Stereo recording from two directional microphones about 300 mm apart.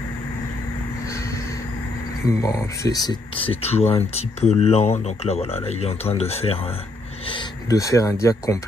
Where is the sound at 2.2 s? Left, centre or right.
Centre.